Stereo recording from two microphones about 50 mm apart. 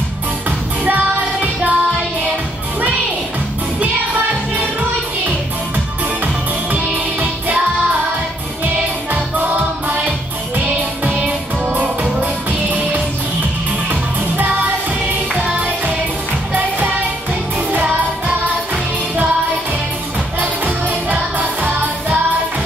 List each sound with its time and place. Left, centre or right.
0.8 s music: right
6.2 s music: right
9.1 s music: right
15.3 s music: right
20.3 s music: right